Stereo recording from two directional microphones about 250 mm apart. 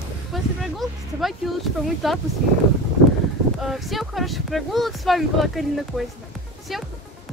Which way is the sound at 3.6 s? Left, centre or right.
Centre.